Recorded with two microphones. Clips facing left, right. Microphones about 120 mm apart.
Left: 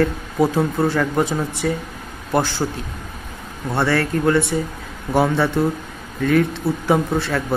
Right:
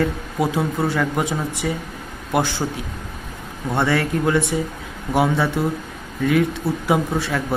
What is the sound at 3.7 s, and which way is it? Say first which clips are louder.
Speech: left 1 dB; 15° right (ahead or behind).